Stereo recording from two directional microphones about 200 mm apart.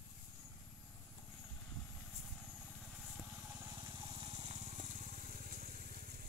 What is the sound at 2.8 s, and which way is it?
Vehicle, 5° right (ahead or behind).